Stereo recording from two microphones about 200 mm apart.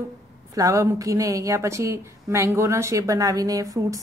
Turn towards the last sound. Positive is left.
turn(degrees=-15)  # may be behind; listen again after turning